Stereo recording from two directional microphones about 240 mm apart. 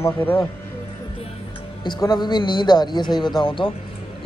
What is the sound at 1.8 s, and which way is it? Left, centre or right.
Speech, centre.